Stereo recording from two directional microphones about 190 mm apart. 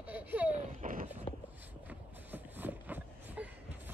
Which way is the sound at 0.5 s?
45° right (ahead or behind).